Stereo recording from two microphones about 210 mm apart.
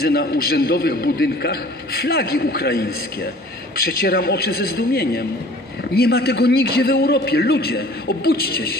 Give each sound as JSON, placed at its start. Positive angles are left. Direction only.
{"t": 0.0, "sound": "a man's voice", "side_deg": 45}